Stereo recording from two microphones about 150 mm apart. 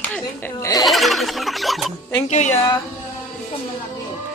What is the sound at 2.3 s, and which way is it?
Speech, 55° left (ahead or behind).